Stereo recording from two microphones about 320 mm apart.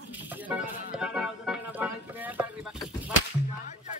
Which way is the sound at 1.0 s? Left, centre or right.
Centre.